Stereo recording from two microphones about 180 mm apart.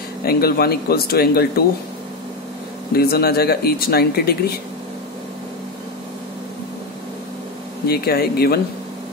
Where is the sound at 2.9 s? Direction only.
60° left (ahead or behind).